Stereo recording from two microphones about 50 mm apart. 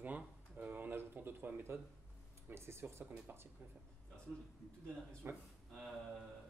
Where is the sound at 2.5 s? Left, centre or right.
Right.